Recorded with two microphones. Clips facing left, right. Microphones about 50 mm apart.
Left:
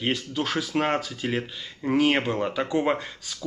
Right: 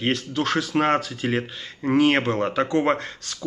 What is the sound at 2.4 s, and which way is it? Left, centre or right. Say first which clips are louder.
Speech: right 4 dB; centre.